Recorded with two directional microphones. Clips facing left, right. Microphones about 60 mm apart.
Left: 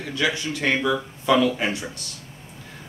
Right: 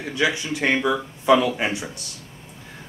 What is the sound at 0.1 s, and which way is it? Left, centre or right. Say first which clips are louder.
Speech: right 2 dB; centre.